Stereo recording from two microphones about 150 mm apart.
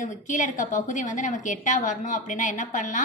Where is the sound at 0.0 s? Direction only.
55° left (ahead or behind).